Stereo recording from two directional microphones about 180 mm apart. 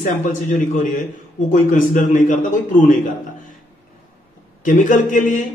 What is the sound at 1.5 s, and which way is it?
A man's voice, 45° left (ahead or behind).